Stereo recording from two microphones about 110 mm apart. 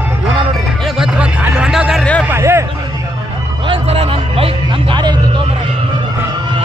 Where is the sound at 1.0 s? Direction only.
10° right (ahead or behind).